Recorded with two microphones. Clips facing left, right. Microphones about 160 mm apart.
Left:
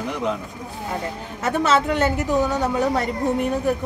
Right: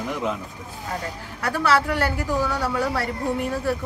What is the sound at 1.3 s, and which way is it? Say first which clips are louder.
A woman's voice: left 2 dB; 20° left (ahead or behind).